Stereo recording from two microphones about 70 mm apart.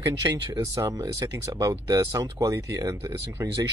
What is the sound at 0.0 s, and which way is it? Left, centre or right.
Speech, right.